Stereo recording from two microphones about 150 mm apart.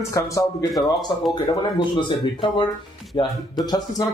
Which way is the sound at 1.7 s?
30° left (ahead or behind).